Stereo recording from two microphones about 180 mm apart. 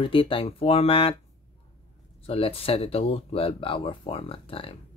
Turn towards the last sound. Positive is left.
turn(degrees=30)  # may be behind; listen again after turning